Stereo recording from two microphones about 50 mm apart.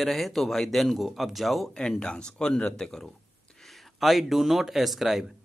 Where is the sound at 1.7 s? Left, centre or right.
Centre.